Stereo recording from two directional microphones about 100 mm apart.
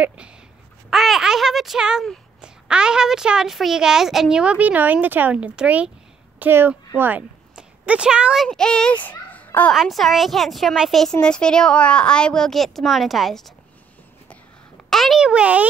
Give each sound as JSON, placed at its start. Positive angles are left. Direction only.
{"t": 0.8, "sound": "a sound", "side_deg": 0}
{"t": 2.4, "sound": "a woman's voice", "side_deg": -10}
{"t": 8.5, "sound": "a woman's voice", "side_deg": 5}
{"t": 9.0, "sound": "a sound", "side_deg": 15}
{"t": 9.8, "sound": "a woman's voice", "side_deg": 0}
{"t": 14.9, "sound": "a child's voice", "side_deg": 0}